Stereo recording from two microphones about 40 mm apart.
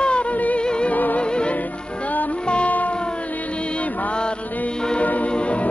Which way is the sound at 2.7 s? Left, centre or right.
Left.